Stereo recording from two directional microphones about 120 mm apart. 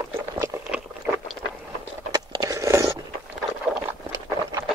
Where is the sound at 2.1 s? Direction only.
30° right (ahead or behind).